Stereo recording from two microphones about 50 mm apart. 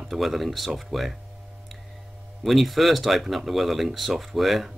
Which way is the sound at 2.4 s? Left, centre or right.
Centre.